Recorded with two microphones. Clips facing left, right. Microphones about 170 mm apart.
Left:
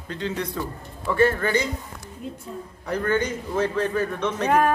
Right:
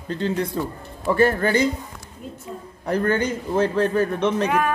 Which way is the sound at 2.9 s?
35° right (ahead or behind).